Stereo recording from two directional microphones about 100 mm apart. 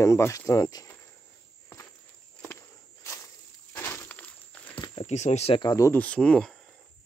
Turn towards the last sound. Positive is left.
turn(degrees=10)  # may be behind; listen again after turning